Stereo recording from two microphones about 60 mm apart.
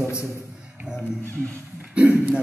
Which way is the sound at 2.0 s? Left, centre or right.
Right.